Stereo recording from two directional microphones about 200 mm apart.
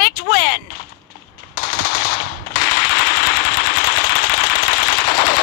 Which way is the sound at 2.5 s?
50° left (ahead or behind).